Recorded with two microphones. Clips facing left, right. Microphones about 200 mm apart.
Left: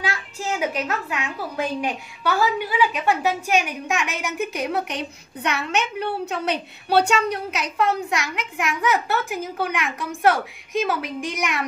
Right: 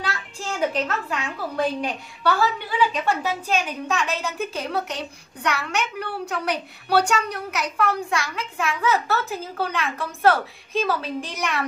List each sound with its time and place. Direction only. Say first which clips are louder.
0.0 s a child's voice: left 3 dB; 10° left (ahead or behind)